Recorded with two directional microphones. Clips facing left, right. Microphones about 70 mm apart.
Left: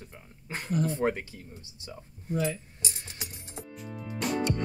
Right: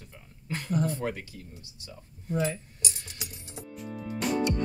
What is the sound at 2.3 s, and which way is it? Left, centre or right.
Speech, right.